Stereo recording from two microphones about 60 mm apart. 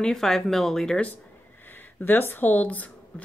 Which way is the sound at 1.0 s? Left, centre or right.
Left.